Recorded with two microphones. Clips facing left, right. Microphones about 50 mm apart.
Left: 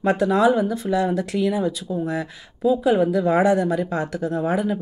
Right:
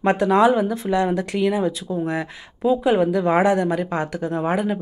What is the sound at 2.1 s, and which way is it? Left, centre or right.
Speech, right.